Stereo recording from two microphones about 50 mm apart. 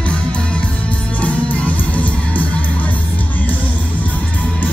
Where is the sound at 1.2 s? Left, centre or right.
Left.